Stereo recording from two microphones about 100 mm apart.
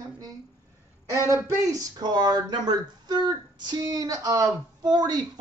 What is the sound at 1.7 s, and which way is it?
Speech, 40° right (ahead or behind).